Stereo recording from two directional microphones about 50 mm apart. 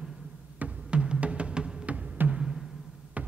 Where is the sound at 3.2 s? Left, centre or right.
Right.